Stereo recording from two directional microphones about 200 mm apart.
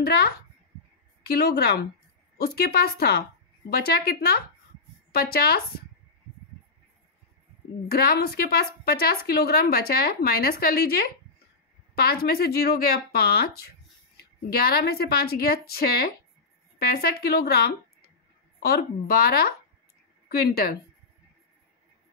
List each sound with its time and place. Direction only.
0.0 s a woman's voice: 50° left (ahead or behind)
7.9 s a woman's voice: 50° left (ahead or behind)